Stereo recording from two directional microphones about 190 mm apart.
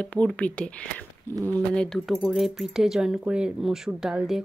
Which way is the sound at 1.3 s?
20° right (ahead or behind).